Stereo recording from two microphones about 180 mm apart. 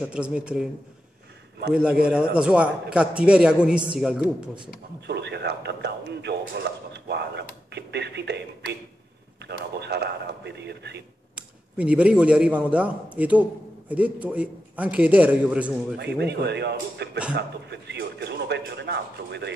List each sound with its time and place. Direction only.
0.0 s a man's voice: 5° right (ahead or behind)
1.7 s a man's voice: 5° right (ahead or behind)
5.0 s speech: 70° right (ahead or behind)
7.7 s a sound: 70° right (ahead or behind)
9.4 s a man's voice: 70° right (ahead or behind)
11.3 s a man's voice: 5° right (ahead or behind)
16.0 s a man's voice: 70° right (ahead or behind)